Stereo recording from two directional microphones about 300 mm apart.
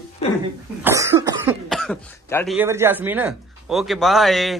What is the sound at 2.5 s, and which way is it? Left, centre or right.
Speech, centre.